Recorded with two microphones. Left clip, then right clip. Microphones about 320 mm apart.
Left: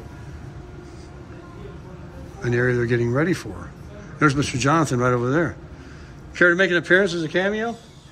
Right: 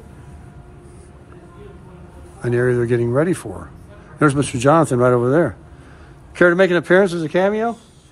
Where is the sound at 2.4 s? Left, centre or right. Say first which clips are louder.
Right 3 dB; centre.